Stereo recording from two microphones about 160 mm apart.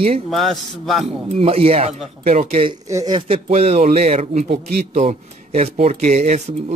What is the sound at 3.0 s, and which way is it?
Speech, 25° right (ahead or behind).